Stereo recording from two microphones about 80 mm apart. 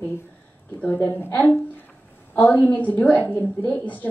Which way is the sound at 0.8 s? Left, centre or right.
Left.